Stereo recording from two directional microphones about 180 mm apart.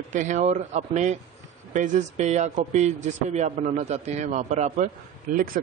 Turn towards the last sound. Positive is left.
turn(degrees=-50)  # may be behind; listen again after turning